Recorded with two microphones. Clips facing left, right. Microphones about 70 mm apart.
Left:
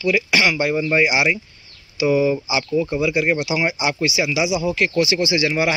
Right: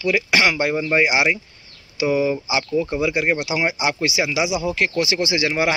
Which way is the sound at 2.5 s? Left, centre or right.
Right.